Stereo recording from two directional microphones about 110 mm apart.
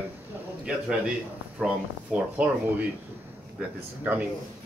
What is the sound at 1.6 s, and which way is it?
Speech, 10° right (ahead or behind).